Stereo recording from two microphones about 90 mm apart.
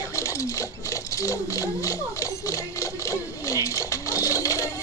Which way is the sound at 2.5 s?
40° left (ahead or behind).